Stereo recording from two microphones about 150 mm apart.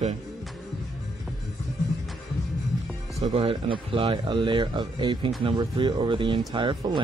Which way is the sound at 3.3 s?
35° right (ahead or behind).